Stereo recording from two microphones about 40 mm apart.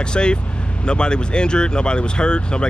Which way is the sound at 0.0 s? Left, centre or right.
Left.